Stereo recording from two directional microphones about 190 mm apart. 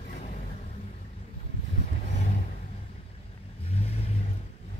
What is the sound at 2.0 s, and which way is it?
Vehicle, 40° left (ahead or behind).